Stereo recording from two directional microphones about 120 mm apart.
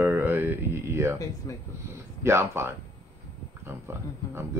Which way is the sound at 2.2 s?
20° right (ahead or behind).